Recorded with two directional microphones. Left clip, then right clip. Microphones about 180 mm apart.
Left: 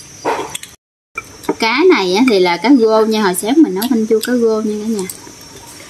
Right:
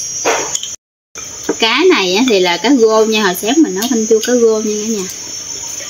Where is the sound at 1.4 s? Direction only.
30° left (ahead or behind).